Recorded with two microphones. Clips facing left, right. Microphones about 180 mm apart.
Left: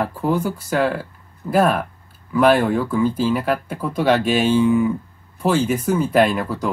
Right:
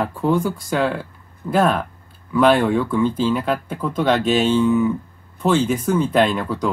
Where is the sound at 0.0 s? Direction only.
5° left (ahead or behind).